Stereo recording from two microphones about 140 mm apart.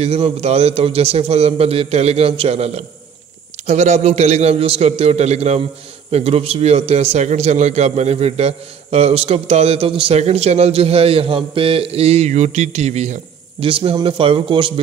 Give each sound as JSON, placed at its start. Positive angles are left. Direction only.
{"t": 0.0, "sound": "a man's voice", "side_deg": -50}
{"t": 13.7, "sound": "speech", "side_deg": -40}